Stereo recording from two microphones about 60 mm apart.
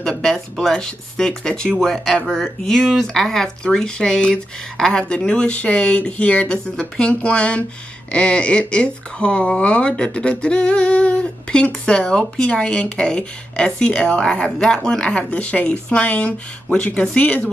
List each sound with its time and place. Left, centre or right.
0.2 s speech: centre